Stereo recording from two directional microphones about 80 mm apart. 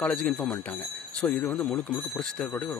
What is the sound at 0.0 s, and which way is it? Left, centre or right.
Speech, centre.